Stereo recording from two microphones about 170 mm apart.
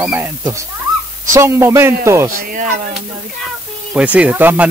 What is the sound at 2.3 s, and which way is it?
Speech, 50° right (ahead or behind).